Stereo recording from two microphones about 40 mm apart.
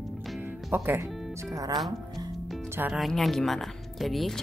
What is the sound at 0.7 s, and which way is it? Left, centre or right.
Speech, right.